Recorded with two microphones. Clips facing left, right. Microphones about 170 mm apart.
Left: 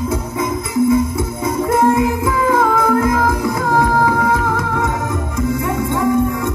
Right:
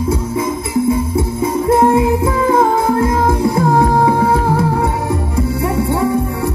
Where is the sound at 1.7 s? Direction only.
30° right (ahead or behind).